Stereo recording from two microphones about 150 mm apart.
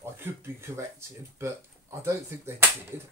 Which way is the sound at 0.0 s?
15° right (ahead or behind).